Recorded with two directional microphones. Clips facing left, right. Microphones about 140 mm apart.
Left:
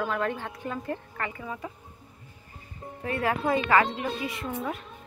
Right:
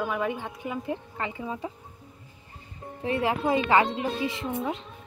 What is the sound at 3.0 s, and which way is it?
Speech, 25° right (ahead or behind).